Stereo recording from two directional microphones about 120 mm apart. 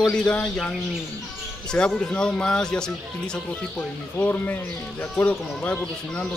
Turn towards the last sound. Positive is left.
turn(degrees=10)  # may be behind; listen again after turning